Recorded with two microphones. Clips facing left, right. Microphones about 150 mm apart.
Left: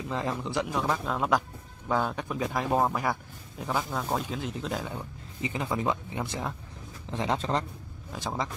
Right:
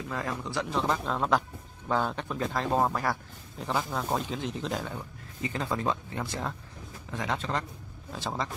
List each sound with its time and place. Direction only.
0.1 s speech: 20° left (ahead or behind)
0.7 s speech: 5° left (ahead or behind)
4.8 s speech: 15° left (ahead or behind)
7.1 s a man's voice: 30° left (ahead or behind)
8.1 s speech: 10° left (ahead or behind)